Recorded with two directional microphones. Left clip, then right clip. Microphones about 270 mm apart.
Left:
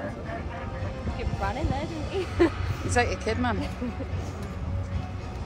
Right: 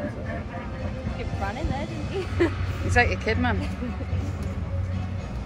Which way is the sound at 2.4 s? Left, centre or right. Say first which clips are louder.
Left 1 dB; left.